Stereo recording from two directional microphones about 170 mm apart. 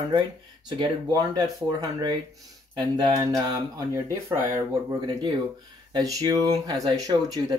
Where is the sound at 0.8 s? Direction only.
25° right (ahead or behind).